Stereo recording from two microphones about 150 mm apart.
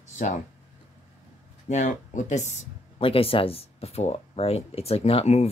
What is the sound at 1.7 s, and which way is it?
Speech, 55° left (ahead or behind).